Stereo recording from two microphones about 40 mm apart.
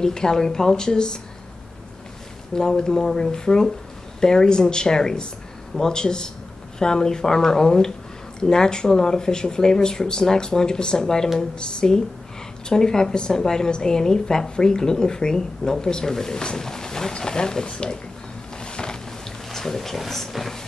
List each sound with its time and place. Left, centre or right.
0.0 s a woman's voice: centre
2.5 s a woman's voice: centre
18.6 s music: left
19.5 s speech: centre